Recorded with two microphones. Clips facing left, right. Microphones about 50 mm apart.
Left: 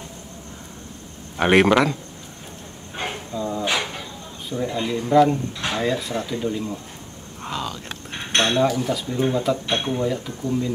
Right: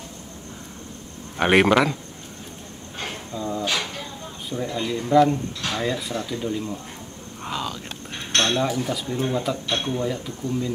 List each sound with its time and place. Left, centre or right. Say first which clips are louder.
1.4 s cutlery: left 1 dB; centre
3.3 s a sound: left 1 dB; centre
3.6 s a sound: left 2 dB; centre
4.6 s speech: left 1 dB; centre
5.8 s cutlery: left 3 dB; centre
6.1 s speech: left 2 dB; centre
7.4 s a sound: even; centre
8.1 s cutlery: left 2 dB; centre
8.5 s cutlery: left 4 dB; centre
9.7 s speech: left 2 dB; centre